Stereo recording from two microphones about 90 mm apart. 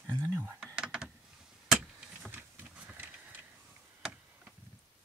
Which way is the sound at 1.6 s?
5° right (ahead or behind).